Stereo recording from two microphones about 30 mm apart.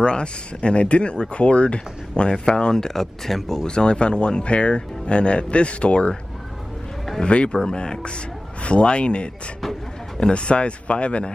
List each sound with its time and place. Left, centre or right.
0.0 s speech: left; by 3.6 s centre
3.6 s speech: left
7.2 s speech: left
7.6 s speech: left
10.3 s speech: left